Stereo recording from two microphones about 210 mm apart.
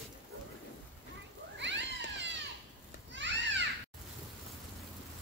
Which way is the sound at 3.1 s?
60° right (ahead or behind).